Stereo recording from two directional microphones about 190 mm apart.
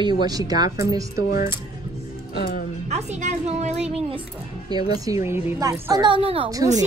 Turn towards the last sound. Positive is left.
turn(degrees=-30)  # may be behind; listen again after turning